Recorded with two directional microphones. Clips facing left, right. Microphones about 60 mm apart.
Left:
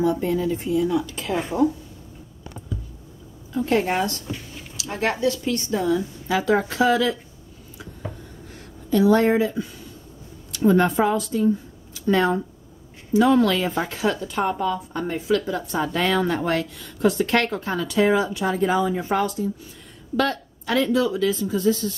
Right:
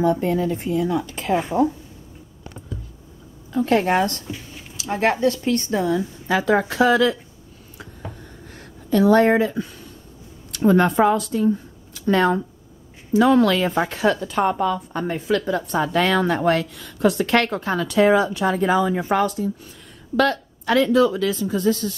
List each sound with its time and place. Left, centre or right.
0.0 s speech: right
3.6 s a woman's voice: right
4.7 s speech: right
8.9 s speech: right
10.6 s a woman's voice: right
20.2 s a woman's voice: right